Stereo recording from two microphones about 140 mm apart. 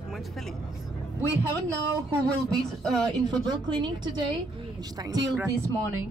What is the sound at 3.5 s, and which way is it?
A woman's voice, 35° right (ahead or behind).